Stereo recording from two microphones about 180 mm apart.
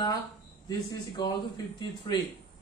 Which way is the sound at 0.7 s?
20° left (ahead or behind).